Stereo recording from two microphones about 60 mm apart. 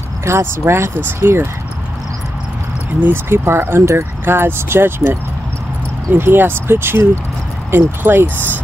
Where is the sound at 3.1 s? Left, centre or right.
Right.